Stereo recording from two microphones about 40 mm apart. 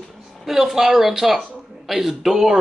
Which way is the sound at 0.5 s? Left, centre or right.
Centre.